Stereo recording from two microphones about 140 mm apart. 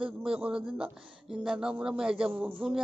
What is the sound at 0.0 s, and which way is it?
Speech, 5° right (ahead or behind).